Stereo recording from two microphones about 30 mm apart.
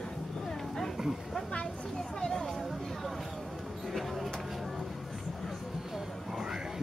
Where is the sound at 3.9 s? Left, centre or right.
Centre.